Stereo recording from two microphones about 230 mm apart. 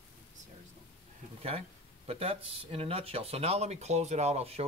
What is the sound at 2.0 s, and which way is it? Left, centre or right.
Speech, right.